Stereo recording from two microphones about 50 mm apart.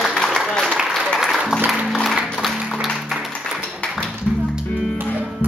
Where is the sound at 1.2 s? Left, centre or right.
Centre.